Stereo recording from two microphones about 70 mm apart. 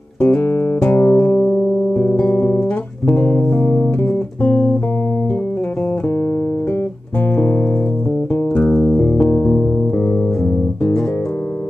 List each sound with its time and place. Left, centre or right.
0.2 s music: left
7.3 s music: left